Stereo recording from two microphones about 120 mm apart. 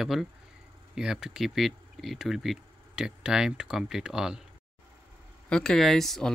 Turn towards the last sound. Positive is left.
turn(degrees=5)  # may be behind; listen again after turning